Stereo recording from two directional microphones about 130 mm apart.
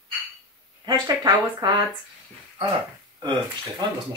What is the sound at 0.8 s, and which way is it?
Speech, 35° right (ahead or behind).